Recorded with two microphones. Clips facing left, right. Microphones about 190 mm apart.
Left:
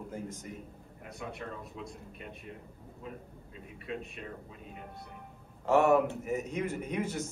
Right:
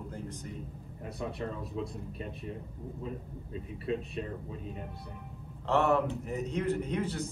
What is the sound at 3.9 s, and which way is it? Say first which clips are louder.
Speech: right 6 dB; 35° right (ahead or behind).